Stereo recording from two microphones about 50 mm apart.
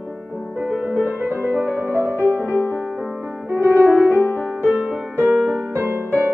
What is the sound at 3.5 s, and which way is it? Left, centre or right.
Music, right.